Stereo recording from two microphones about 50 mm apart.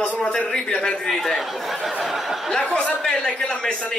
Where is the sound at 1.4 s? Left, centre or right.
Centre.